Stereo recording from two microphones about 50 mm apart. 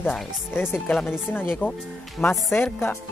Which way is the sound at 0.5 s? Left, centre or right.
Left.